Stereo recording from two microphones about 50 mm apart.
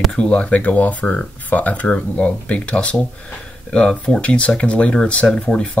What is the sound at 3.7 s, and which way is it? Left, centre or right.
Speech, centre.